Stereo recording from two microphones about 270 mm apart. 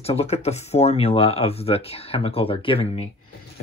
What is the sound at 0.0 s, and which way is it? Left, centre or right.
Speech, left.